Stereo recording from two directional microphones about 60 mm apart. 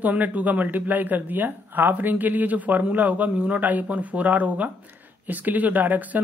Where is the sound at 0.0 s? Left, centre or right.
Right.